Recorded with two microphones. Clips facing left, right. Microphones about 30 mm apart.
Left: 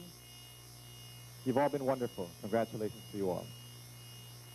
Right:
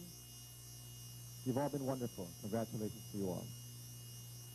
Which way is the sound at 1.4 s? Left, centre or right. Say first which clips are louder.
Left 7 dB; left.